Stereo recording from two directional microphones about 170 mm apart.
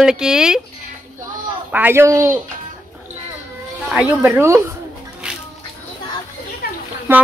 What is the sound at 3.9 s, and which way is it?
Speech, 10° right (ahead or behind).